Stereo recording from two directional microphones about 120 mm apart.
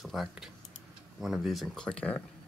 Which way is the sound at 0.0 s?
Centre (ahead or behind).